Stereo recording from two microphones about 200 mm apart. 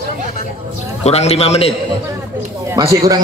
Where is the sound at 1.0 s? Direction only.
30° left (ahead or behind).